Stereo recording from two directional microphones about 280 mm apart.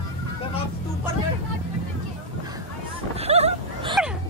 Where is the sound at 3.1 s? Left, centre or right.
Right.